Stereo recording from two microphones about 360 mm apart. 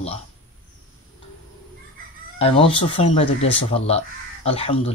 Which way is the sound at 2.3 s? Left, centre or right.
Centre.